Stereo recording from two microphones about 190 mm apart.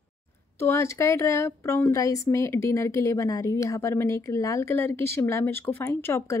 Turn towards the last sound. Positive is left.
turn(degrees=15)  # may be behind; listen again after turning